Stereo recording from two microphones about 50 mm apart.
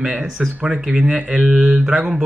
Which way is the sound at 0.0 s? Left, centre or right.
Centre.